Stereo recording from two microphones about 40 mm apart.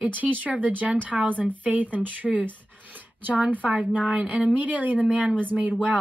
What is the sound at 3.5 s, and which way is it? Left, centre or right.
Speech, right.